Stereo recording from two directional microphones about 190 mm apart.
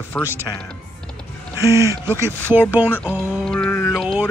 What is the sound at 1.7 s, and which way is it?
Speech, 15° right (ahead or behind).